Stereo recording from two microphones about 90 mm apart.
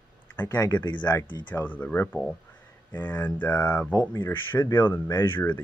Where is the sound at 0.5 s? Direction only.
45° left (ahead or behind).